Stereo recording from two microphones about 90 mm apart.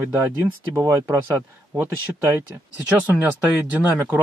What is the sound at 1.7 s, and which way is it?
Speech, 25° right (ahead or behind).